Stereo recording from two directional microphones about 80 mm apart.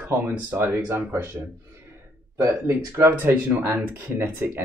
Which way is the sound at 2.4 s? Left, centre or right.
Right.